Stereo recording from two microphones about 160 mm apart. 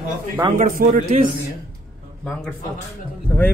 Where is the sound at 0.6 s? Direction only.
55° right (ahead or behind).